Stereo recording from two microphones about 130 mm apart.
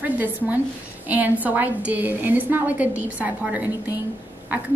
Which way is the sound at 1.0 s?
10° right (ahead or behind).